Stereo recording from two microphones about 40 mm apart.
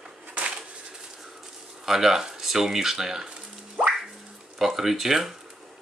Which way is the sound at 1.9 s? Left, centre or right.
Centre.